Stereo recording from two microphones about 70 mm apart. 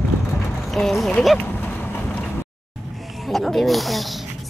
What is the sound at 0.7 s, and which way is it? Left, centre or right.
Speech, centre.